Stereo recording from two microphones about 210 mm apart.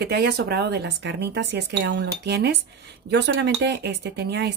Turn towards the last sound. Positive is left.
turn(degrees=-50)  # may be behind; listen again after turning